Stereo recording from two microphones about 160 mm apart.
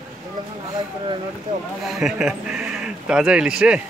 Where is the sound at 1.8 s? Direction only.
Centre (ahead or behind).